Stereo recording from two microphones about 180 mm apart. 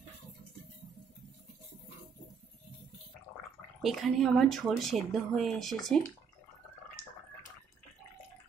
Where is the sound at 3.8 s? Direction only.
Centre (ahead or behind).